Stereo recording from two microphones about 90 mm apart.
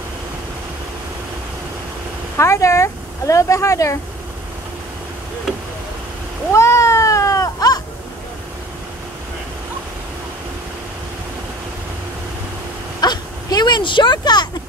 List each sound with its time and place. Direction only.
2.3 s speech: 35° left (ahead or behind)
6.5 s cat: 35° left (ahead or behind)
13.0 s a sound: 50° left (ahead or behind)